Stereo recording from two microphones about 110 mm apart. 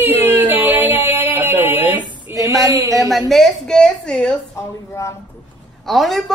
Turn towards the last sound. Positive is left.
turn(degrees=0)  # may be behind; listen again after turning